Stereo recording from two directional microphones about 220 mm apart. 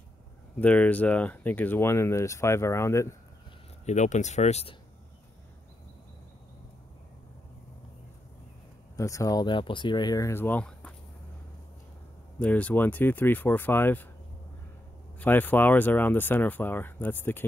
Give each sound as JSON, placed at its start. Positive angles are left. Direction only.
{"t": 0.6, "sound": "speech", "side_deg": 5}
{"t": 3.8, "sound": "speech", "side_deg": 30}
{"t": 8.9, "sound": "speech", "side_deg": 15}
{"t": 12.4, "sound": "speech", "side_deg": 5}
{"t": 15.1, "sound": "speech", "side_deg": 10}